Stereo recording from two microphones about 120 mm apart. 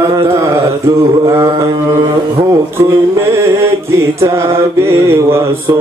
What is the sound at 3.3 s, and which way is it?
Mantra, 25° right (ahead or behind).